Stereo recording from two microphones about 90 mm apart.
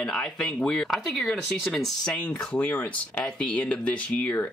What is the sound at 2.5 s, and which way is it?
Speech, 20° left (ahead or behind).